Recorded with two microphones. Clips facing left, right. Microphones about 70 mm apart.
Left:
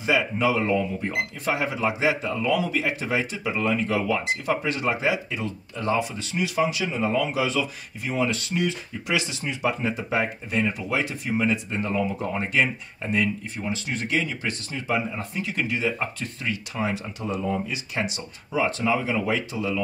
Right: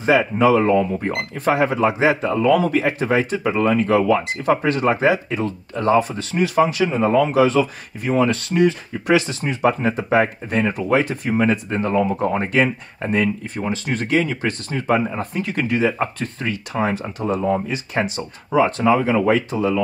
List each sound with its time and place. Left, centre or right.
0.0 s speech: right